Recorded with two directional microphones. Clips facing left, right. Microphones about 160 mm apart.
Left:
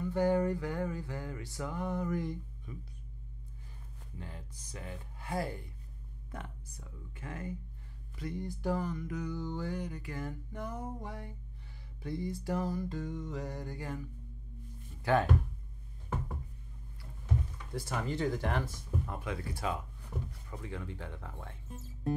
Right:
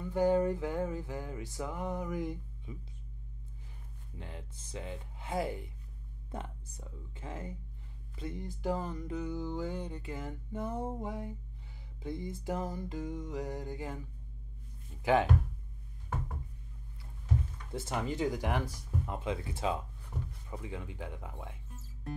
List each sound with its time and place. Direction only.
0.1 s music: 20° right (ahead or behind)
4.2 s music: 20° right (ahead or behind)
15.0 s speech: 15° right (ahead or behind)
17.7 s music: 20° right (ahead or behind)